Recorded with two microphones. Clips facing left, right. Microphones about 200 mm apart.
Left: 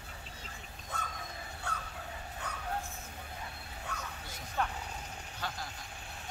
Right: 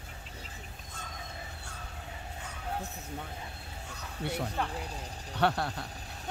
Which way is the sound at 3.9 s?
65° left (ahead or behind).